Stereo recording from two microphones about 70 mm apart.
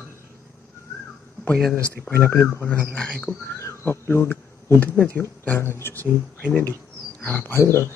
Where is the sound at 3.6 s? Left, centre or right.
Left.